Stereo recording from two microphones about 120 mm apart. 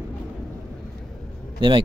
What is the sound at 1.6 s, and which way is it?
Speech, 45° right (ahead or behind).